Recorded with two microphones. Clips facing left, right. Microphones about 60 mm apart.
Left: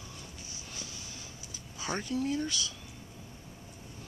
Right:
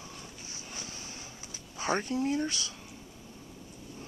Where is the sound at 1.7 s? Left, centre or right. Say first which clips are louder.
Right 3 dB; right.